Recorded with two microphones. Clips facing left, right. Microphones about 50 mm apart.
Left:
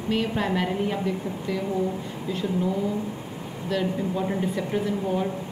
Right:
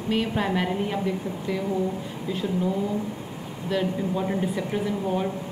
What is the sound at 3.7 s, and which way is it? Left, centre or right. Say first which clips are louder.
A woman's voice: even; centre.